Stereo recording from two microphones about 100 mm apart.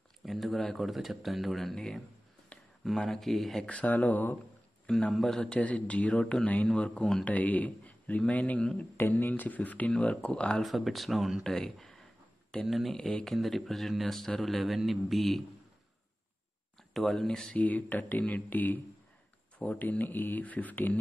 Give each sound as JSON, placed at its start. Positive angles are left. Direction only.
{"t": 0.2, "sound": "speech", "side_deg": 0}
{"t": 3.6, "sound": "speech", "side_deg": 15}
{"t": 4.8, "sound": "speech", "side_deg": 5}
{"t": 16.9, "sound": "speech", "side_deg": 0}